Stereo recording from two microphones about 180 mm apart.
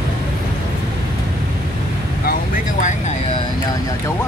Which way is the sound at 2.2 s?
50° left (ahead or behind).